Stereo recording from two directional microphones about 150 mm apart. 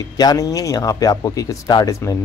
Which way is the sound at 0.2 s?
25° left (ahead or behind).